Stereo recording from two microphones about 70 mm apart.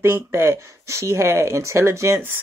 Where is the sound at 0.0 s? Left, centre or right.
Right.